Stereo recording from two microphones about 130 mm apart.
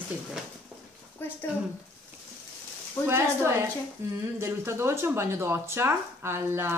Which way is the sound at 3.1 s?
20° right (ahead or behind).